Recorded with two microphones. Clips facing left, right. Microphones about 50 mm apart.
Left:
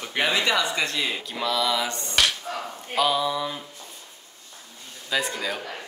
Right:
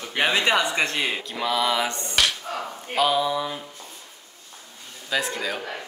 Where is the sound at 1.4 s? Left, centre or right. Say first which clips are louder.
Right 2 dB; right.